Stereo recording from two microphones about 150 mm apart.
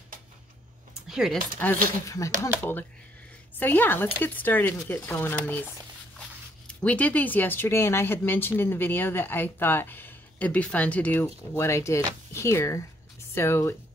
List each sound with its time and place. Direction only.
1.0 s speech: centre (ahead or behind)
1.6 s speech: 15° left (ahead or behind)
6.8 s speech: 10° left (ahead or behind)